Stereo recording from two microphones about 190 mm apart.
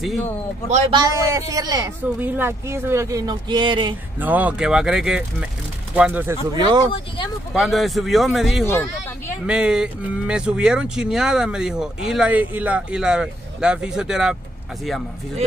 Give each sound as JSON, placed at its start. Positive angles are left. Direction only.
{"t": 0.7, "sound": "a man's voice", "side_deg": -35}
{"t": 0.9, "sound": "speech", "side_deg": -20}
{"t": 4.2, "sound": "speech", "side_deg": -10}
{"t": 6.5, "sound": "speech", "side_deg": -20}
{"t": 7.5, "sound": "speech", "side_deg": 0}